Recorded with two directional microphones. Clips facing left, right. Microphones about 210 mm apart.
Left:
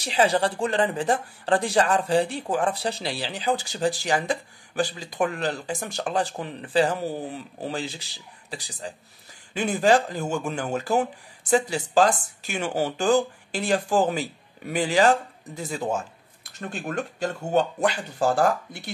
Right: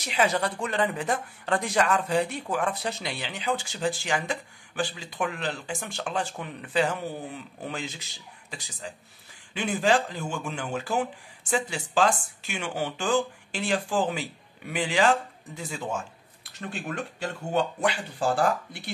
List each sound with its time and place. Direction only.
0.0 s speech: 30° left (ahead or behind)